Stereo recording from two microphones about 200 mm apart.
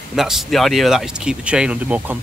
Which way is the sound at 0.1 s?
Centre (ahead or behind).